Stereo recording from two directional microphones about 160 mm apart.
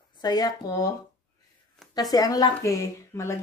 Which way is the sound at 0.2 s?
25° left (ahead or behind).